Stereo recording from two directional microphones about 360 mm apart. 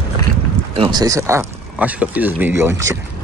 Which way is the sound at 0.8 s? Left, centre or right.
Centre.